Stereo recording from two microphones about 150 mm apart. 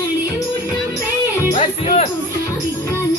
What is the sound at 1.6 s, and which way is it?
Music, 50° left (ahead or behind).